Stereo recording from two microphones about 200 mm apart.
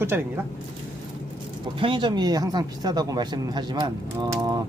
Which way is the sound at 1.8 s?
25° right (ahead or behind).